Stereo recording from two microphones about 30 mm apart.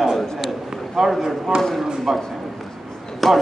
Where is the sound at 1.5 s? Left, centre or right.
Right.